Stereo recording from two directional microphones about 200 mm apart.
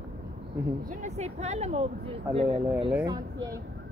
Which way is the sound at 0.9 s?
35° right (ahead or behind).